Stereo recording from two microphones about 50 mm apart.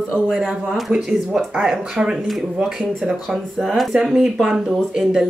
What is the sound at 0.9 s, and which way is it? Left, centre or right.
Speech, right.